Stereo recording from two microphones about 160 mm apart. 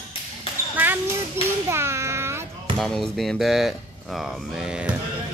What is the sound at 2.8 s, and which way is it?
Speech, centre (ahead or behind).